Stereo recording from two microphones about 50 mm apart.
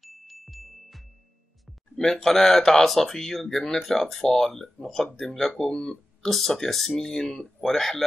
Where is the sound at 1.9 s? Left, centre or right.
Centre.